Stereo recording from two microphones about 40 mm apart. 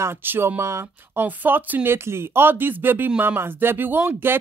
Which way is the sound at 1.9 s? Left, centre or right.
Right.